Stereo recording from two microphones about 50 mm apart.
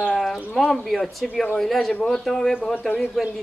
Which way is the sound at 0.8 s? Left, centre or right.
Centre.